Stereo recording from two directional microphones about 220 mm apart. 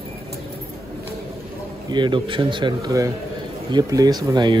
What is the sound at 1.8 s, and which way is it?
Speech, 20° right (ahead or behind).